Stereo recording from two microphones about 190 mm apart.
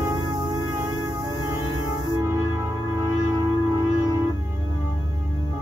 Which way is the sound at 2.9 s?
20° right (ahead or behind).